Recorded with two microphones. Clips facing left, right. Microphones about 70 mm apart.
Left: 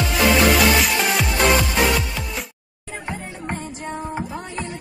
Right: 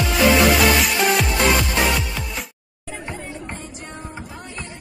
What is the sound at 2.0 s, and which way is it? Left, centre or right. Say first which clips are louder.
Music: left 1 dB; centre.